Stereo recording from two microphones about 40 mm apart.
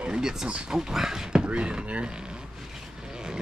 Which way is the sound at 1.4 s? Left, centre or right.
Right.